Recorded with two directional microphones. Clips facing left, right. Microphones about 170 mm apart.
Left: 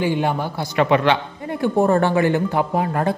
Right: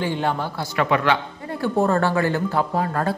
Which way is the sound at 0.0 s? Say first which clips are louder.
Left 3 dB; 15° left (ahead or behind).